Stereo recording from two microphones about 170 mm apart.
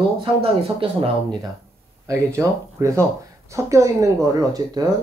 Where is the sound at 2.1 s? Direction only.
15° right (ahead or behind).